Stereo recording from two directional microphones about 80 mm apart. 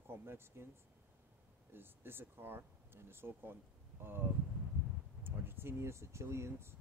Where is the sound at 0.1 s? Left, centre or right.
Right.